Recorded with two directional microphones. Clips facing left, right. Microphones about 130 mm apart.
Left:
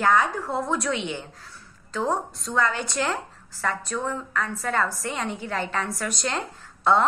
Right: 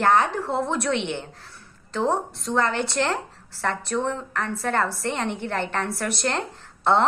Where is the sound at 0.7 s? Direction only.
60° right (ahead or behind).